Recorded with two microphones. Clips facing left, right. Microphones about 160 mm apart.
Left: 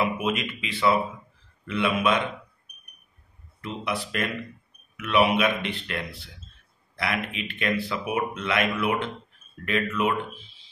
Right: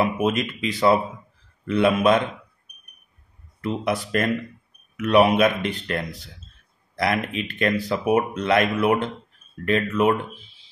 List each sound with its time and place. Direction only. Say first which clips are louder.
0.0 s speech: right 4 dB; 40° right (ahead or behind)
3.6 s speech: right 6 dB; 45° right (ahead or behind)